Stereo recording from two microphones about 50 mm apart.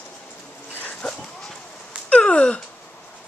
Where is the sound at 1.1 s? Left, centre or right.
Centre.